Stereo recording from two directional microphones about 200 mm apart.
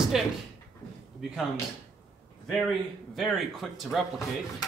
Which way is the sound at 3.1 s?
Centre (ahead or behind).